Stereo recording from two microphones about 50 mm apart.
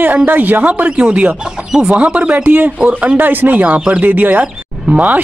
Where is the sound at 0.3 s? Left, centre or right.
Right.